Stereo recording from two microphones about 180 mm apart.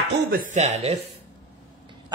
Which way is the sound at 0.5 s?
40° right (ahead or behind).